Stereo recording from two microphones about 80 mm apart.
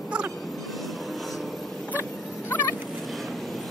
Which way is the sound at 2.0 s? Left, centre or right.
Left.